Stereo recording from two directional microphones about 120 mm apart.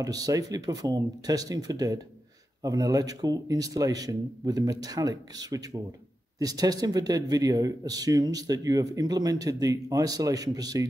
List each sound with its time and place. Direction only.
0.0 s speech: 30° right (ahead or behind)